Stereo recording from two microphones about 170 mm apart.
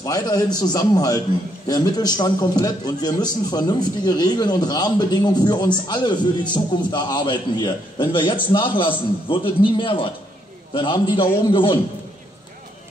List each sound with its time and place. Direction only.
0.0 s a man's voice: 20° left (ahead or behind)